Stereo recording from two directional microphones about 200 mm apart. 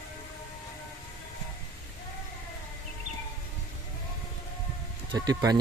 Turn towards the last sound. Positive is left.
turn(degrees=-20)  # may be behind; listen again after turning